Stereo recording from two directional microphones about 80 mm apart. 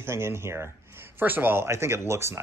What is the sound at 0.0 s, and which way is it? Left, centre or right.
Speech, right.